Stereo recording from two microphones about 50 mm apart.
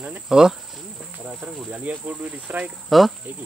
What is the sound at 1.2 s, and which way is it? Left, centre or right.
Cricket, right.